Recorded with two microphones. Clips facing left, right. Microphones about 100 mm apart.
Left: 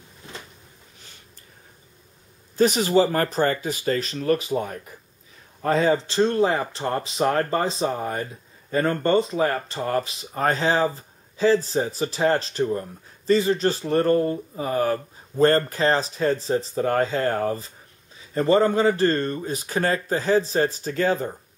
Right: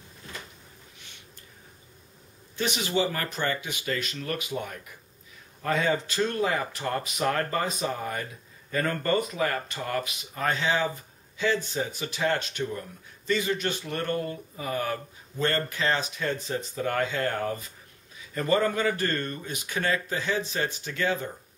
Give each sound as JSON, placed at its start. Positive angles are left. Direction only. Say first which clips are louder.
{"t": 2.5, "sound": "speech", "louder": "left 9 dB", "side_deg": 40}